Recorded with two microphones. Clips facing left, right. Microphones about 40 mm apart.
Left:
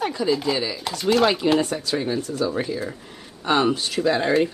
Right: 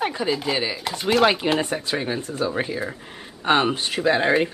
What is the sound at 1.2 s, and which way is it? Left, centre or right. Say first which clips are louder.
Speech: right 1 dB; centre.